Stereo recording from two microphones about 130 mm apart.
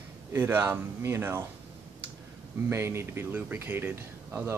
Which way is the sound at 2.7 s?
20° right (ahead or behind).